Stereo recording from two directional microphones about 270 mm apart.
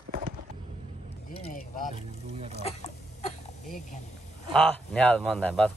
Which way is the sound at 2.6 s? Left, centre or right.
Left.